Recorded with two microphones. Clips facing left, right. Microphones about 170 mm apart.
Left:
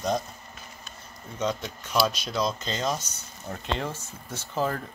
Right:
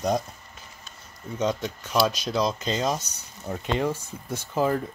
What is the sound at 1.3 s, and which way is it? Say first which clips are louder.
Speech: right 3 dB; 15° right (ahead or behind).